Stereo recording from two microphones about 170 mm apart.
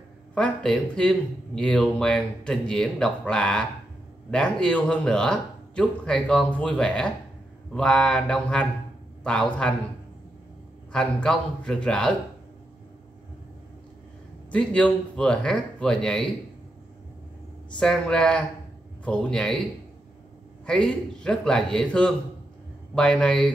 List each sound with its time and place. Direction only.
0.3 s speech: 5° left (ahead or behind)
10.9 s speech: 5° left (ahead or behind)
14.5 s speech: 5° left (ahead or behind)
17.7 s speech: 5° left (ahead or behind)
20.6 s speech: 5° left (ahead or behind)